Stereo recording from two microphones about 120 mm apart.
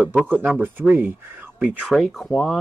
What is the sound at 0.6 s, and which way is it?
Speech, 15° right (ahead or behind).